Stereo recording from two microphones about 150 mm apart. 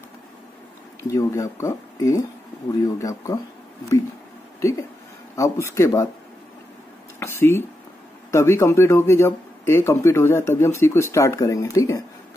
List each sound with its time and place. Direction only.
1.0 s a man's voice: 20° left (ahead or behind)
4.6 s a man's voice: 20° left (ahead or behind)
7.2 s a sound: 15° left (ahead or behind)
8.3 s a man's voice: 20° left (ahead or behind)